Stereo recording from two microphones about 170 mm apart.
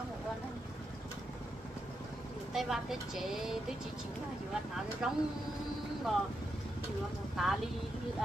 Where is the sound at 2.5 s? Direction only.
Centre (ahead or behind).